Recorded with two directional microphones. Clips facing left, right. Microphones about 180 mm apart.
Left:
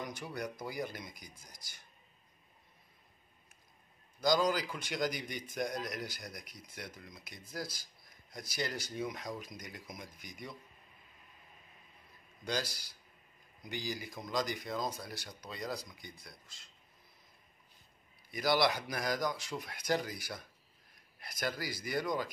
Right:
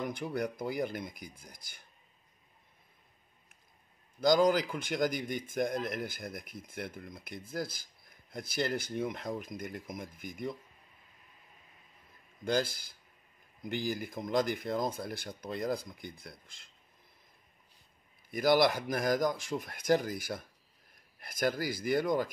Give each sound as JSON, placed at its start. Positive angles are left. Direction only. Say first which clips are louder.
{"t": 0.0, "sound": "speech", "louder": "right 6 dB", "side_deg": -55}
{"t": 4.2, "sound": "a man's voice", "louder": "right 5 dB", "side_deg": -55}
{"t": 12.4, "sound": "a man's voice", "louder": "right 6 dB", "side_deg": -50}
{"t": 18.3, "sound": "a man's voice", "louder": "right 5 dB", "side_deg": -50}